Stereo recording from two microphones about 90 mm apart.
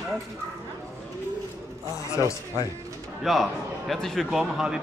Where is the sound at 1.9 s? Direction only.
35° left (ahead or behind).